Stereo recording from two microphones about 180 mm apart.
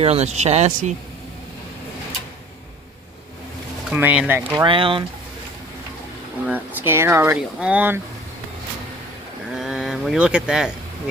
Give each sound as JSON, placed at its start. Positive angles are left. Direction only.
{"t": 0.0, "sound": "speech", "side_deg": -35}
{"t": 3.9, "sound": "speech", "side_deg": -10}
{"t": 4.6, "sound": "speech", "side_deg": -30}
{"t": 6.5, "sound": "speech", "side_deg": -10}
{"t": 9.5, "sound": "a sound", "side_deg": 0}